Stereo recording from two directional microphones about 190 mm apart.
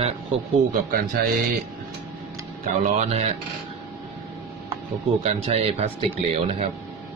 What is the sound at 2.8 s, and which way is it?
Speech, 35° right (ahead or behind).